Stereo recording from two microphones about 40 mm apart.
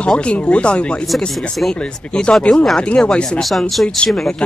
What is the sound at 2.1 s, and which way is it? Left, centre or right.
Speech, left.